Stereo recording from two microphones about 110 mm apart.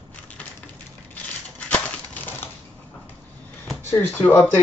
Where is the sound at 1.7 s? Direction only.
15° left (ahead or behind).